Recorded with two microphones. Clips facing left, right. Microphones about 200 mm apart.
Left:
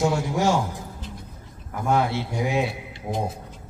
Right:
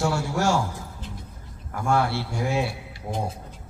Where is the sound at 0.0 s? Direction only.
20° left (ahead or behind).